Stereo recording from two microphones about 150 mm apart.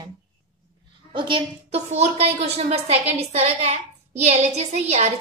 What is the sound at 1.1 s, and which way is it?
A woman's voice, 35° right (ahead or behind).